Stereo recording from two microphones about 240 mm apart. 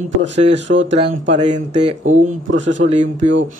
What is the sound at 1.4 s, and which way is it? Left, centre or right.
Speech, right.